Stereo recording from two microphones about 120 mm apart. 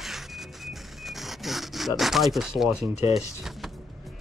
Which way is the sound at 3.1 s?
Centre (ahead or behind).